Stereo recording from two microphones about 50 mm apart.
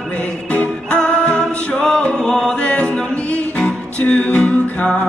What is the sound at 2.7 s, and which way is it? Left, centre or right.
Music, left.